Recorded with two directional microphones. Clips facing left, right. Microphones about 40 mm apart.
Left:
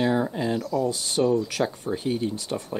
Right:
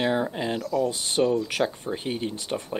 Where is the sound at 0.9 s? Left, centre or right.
Right.